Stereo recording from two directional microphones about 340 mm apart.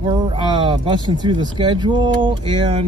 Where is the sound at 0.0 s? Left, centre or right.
Centre.